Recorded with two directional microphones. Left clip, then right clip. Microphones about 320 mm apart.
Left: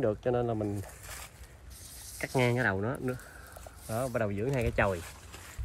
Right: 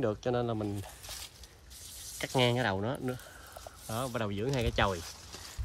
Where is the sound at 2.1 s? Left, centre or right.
Centre.